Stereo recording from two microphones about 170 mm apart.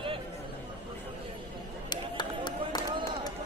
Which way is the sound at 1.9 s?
25° left (ahead or behind).